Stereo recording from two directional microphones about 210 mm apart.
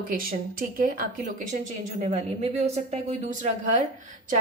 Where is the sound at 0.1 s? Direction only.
45° right (ahead or behind).